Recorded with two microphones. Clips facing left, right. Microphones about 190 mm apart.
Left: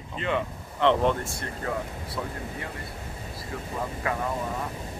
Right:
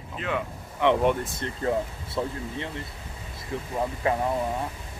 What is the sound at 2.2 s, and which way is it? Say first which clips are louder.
Speech: right 5 dB; 25° right (ahead or behind).